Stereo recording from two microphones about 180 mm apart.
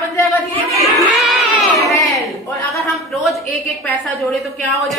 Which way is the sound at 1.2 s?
Centre (ahead or behind).